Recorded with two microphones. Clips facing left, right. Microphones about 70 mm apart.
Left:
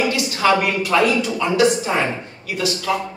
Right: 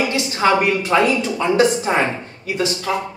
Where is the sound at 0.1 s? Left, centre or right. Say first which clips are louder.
Right 1 dB; right.